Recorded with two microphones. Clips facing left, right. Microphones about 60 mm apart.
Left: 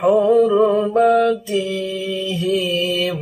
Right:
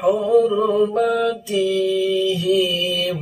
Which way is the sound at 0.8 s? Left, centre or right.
Left.